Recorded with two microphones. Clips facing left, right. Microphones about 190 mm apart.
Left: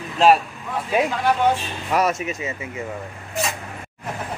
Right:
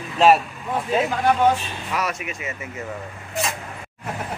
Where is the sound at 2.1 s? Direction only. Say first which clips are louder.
Left 5 dB; 25° left (ahead or behind).